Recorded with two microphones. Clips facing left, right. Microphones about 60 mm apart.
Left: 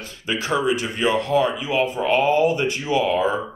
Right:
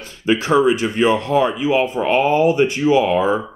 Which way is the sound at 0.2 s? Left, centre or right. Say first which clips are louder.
Right 7 dB; right.